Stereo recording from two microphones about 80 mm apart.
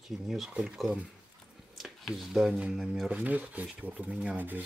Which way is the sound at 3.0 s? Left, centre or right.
Centre.